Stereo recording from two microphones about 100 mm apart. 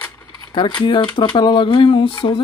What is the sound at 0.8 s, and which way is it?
Speech, 55° left (ahead or behind).